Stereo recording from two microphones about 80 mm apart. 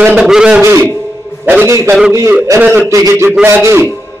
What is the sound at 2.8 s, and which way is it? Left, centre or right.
A man's voice, right.